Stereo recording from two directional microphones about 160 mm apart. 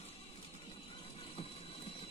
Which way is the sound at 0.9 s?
35° left (ahead or behind).